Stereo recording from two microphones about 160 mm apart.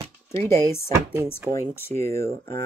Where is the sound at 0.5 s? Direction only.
15° left (ahead or behind).